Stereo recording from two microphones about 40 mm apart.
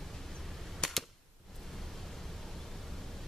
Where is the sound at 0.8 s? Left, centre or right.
Centre.